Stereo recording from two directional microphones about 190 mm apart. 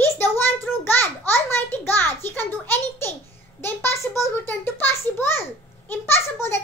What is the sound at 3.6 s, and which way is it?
A child's voice, 10° left (ahead or behind).